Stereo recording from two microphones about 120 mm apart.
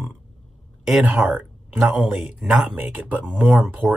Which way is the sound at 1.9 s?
5° right (ahead or behind).